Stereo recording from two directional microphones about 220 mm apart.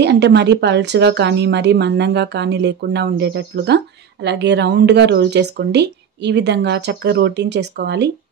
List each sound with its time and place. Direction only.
0.0 s speech: 50° right (ahead or behind)